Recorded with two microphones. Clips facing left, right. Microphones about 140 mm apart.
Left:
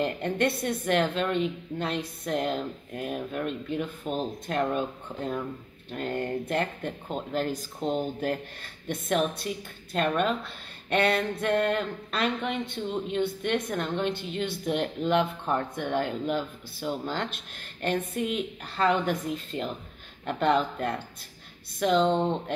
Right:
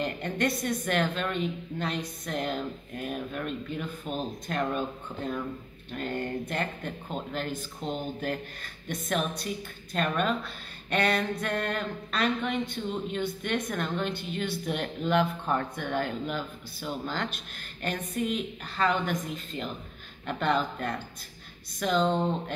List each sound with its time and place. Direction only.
0.0 s a woman's voice: 30° left (ahead or behind)